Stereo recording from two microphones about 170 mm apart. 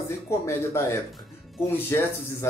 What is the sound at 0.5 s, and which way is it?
Speech, 15° left (ahead or behind).